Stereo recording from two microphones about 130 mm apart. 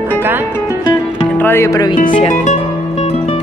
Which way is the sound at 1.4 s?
20° left (ahead or behind).